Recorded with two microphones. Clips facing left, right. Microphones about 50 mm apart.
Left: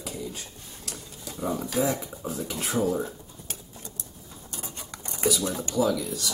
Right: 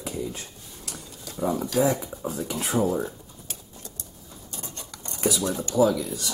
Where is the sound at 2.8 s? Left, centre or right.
Centre.